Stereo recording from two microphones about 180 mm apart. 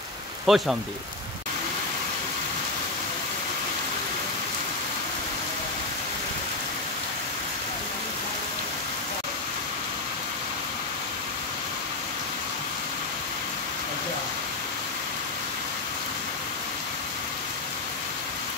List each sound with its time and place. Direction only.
0.5 s speech: centre (ahead or behind)